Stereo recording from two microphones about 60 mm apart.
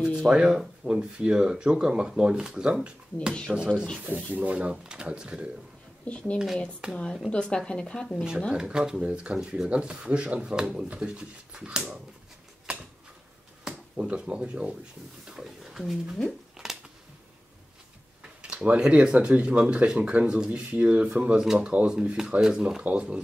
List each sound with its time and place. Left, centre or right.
0.3 s speech: centre
6.0 s speech: left
6.3 s speech: centre
7.2 s speech: centre
8.5 s speech: centre
12.7 s a sound: centre
13.7 s speech: centre
15.2 s a sound: centre
18.4 s speech: centre